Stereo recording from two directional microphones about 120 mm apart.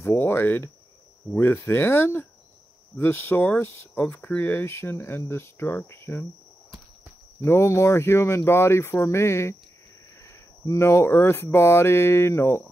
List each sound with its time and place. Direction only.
0.0 s speech: 20° left (ahead or behind)
7.4 s speech: 20° left (ahead or behind)